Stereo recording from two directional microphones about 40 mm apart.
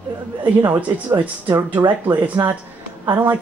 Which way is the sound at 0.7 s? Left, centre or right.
Right.